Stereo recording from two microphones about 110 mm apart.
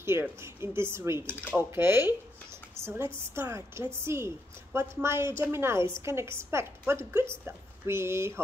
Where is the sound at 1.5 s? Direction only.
20° right (ahead or behind).